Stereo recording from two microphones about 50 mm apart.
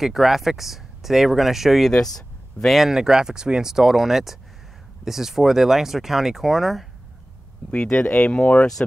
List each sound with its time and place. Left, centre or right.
0.0 s speech: centre
7.7 s speech: centre